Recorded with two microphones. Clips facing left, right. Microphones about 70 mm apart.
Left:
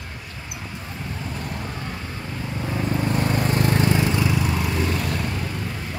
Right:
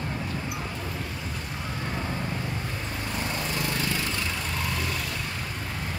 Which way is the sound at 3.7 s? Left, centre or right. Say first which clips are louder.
Left 9 dB; left.